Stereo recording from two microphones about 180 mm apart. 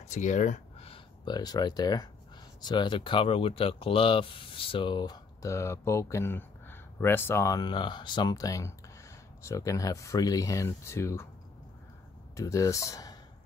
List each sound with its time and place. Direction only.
0.0 s speech: 40° left (ahead or behind); by 11.2 s 15° left (ahead or behind)
12.4 s speech: 15° left (ahead or behind)